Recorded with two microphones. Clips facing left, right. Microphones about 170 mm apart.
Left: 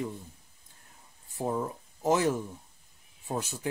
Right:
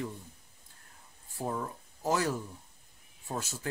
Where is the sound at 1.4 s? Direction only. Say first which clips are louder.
Left 4 dB; 20° left (ahead or behind).